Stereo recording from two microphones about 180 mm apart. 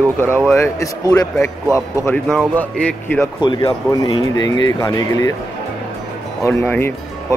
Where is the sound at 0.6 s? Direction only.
15° left (ahead or behind).